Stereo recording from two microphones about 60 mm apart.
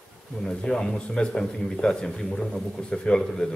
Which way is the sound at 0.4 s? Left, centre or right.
Centre.